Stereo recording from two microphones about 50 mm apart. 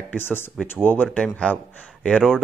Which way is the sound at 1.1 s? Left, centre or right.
Centre.